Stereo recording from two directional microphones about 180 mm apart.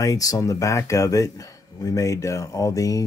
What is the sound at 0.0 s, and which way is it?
Speech, 20° left (ahead or behind).